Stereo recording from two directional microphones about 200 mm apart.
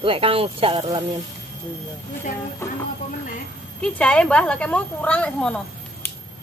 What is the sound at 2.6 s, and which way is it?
A woman's voice, 15° left (ahead or behind).